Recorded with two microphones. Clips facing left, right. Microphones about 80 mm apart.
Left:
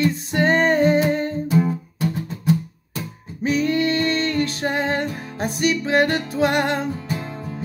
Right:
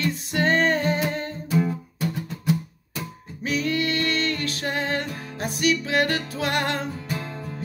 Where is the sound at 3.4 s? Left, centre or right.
Left.